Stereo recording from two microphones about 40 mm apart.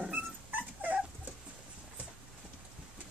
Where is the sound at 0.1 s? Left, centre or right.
Right.